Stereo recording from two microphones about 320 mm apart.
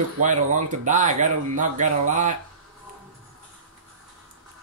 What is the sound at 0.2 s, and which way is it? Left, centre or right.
Speech, right.